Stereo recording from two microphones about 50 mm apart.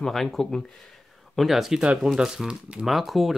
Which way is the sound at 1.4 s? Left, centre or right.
Centre.